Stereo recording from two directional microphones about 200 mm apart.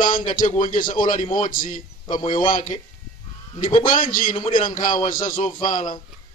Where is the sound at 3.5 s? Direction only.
40° left (ahead or behind).